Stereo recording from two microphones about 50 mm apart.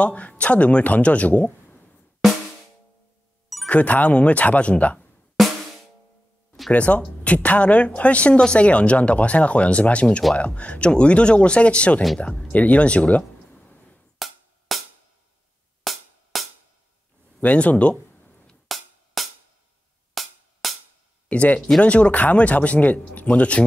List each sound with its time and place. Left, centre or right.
0.0 s speech: left
3.6 s speech: left
6.7 s speech: left
12.4 s a sound: left
14.1 s music: centre
15.8 s music: centre
17.4 s a sound: left
19.2 s music: centre
21.3 s speech: left
21.5 s speech: centre
21.8 s speech: left